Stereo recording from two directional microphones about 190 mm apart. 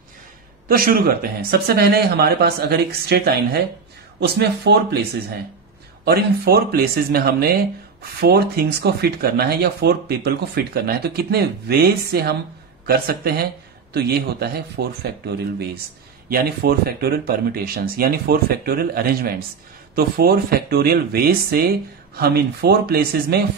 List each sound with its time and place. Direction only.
0.7 s speech: 50° right (ahead or behind)
6.0 s speech: 55° right (ahead or behind)
16.3 s speech: 50° right (ahead or behind)